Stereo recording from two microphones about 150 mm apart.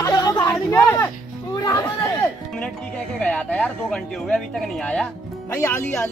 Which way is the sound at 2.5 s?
5° left (ahead or behind).